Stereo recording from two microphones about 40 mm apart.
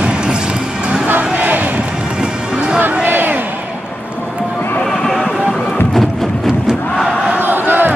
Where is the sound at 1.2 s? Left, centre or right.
Right.